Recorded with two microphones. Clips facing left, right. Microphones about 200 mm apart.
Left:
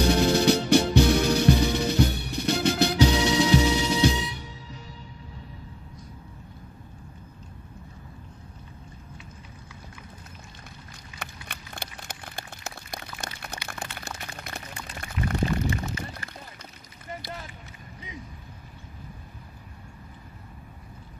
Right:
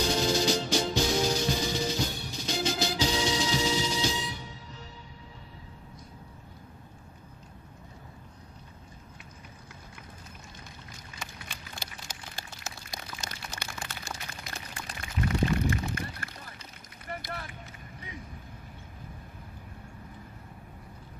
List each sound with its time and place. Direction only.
0.0 s music: 65° left (ahead or behind)
11.1 s a sound: 60° left (ahead or behind)
13.7 s pour: 60° left (ahead or behind)
15.7 s pour: 55° right (ahead or behind)